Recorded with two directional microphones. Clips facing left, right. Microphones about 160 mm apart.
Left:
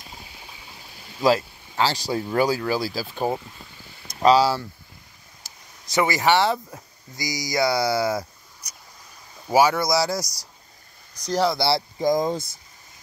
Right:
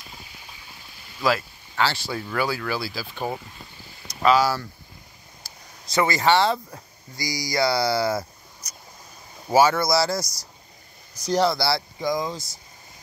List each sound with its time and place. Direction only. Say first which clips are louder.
1.2 s speech: left 4 dB; 35° left (ahead or behind)
5.4 s a sound: right 1 dB; 20° left (ahead or behind)
5.9 s speech: even; 15° left (ahead or behind)
11.1 s speech: right 2 dB; centre (ahead or behind)
11.5 s speech: left 2 dB; 25° left (ahead or behind)
12.0 s speech: left 5 dB; 45° left (ahead or behind)